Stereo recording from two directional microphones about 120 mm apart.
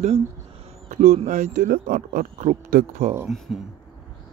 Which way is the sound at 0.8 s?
90° right.